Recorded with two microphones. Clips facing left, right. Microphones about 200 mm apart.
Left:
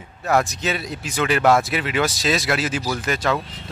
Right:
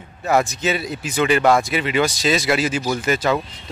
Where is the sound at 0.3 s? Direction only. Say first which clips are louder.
Right 2 dB; centre (ahead or behind).